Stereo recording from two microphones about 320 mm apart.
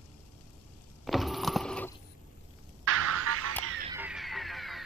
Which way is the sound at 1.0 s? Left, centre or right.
Centre.